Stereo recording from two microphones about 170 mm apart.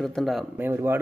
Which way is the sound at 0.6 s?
15° right (ahead or behind).